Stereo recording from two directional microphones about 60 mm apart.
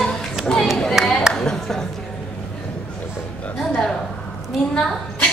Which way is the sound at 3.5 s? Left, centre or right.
Centre.